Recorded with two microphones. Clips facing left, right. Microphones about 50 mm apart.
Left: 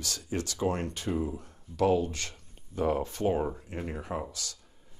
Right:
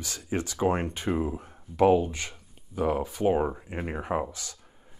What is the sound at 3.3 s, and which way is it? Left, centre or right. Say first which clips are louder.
Speech: right 4 dB; right.